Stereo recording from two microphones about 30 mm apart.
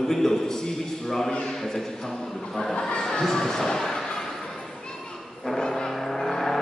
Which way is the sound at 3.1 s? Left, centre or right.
Centre.